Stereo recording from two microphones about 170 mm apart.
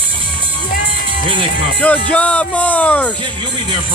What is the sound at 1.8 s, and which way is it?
Speech, 10° left (ahead or behind).